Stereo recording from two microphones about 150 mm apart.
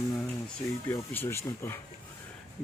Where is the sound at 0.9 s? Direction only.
15° left (ahead or behind).